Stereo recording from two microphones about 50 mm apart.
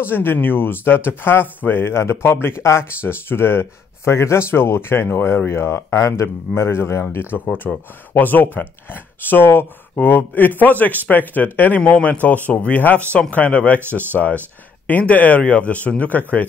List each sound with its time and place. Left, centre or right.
0.0 s speech: left
2.9 s speech: left
5.9 s speech: left
6.2 s speech: left